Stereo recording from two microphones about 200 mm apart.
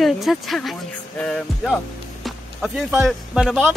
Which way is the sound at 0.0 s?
Centre (ahead or behind).